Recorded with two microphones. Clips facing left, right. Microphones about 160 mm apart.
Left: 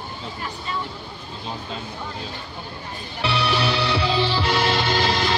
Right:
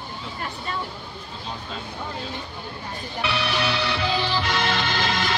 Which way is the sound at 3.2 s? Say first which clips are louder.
Left 3 dB; 30° left (ahead or behind).